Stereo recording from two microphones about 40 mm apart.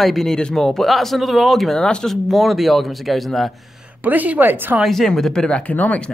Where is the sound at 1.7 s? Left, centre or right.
Centre.